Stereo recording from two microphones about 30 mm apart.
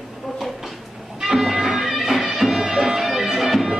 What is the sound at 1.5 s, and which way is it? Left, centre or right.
Music, centre.